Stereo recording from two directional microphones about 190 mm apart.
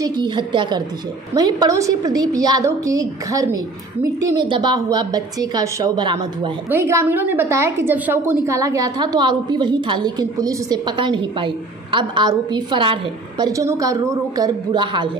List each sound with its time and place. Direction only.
0.0 s a woman's voice: 25° right (ahead or behind)